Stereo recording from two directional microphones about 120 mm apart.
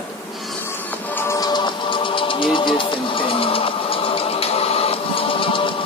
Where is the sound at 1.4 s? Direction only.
40° left (ahead or behind).